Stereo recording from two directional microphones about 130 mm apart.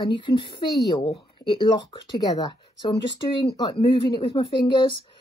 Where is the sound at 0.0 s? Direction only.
35° left (ahead or behind).